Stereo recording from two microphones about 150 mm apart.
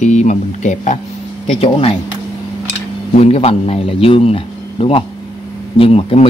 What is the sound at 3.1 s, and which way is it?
Speech, 45° left (ahead or behind).